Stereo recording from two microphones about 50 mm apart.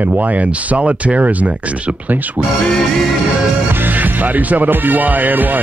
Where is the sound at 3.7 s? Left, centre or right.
Right.